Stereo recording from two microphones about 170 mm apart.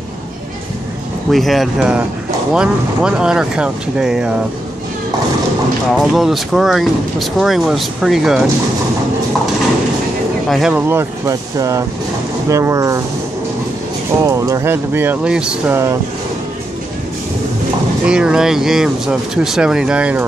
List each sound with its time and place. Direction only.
1.3 s speech: centre (ahead or behind)
5.9 s speech: centre (ahead or behind)
10.5 s speech: centre (ahead or behind)
10.9 s speech: 15° right (ahead or behind)
14.2 s speech: 20° right (ahead or behind)
18.0 s speech: 5° right (ahead or behind)